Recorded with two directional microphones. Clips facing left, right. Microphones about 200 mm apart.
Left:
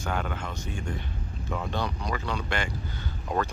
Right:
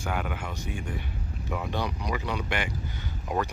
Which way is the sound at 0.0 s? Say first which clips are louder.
Even; 10° right (ahead or behind).